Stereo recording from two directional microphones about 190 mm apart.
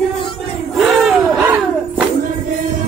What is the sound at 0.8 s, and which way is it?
Battle cry, centre (ahead or behind).